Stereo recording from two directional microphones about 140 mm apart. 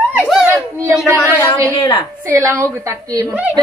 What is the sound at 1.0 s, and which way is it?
Speech, 20° right (ahead or behind).